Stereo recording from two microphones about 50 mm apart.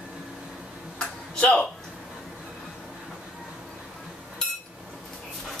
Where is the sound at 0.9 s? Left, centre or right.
Left.